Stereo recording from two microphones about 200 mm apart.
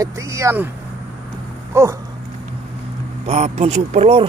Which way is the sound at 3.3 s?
35° right (ahead or behind).